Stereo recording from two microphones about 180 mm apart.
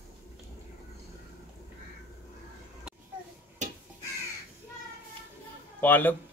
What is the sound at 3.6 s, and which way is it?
Crow, 45° right (ahead or behind).